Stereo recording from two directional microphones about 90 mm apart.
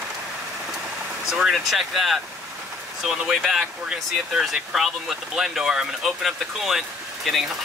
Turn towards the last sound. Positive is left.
turn(degrees=0)  # may be behind; listen again after turning